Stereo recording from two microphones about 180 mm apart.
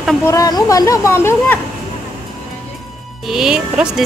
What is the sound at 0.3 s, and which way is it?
Speech, 20° left (ahead or behind).